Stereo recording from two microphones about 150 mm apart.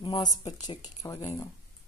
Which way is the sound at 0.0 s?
30° left (ahead or behind).